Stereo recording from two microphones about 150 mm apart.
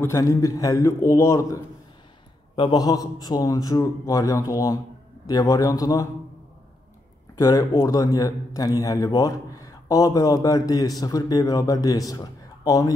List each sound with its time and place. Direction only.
0.0 s a man's voice: 20° left (ahead or behind)
7.3 s a man's voice: 25° left (ahead or behind)